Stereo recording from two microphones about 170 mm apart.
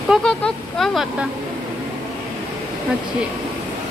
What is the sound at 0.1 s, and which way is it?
Speech, 5° left (ahead or behind).